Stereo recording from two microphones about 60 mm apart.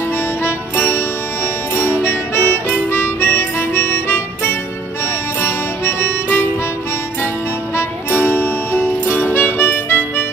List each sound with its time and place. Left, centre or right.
0.4 s music: left
1.8 s harmonica: left
5.4 s music: left
8.1 s music: left